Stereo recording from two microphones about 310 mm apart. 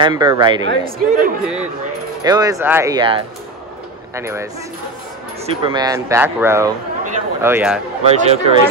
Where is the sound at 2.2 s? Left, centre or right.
Centre.